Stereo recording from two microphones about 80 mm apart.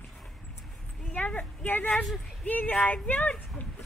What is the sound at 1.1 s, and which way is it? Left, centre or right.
Speech, centre.